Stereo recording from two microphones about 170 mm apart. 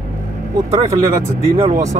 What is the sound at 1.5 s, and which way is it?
Speech, 40° right (ahead or behind).